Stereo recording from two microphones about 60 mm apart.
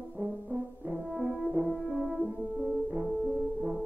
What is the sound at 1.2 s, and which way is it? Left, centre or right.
French horn, right.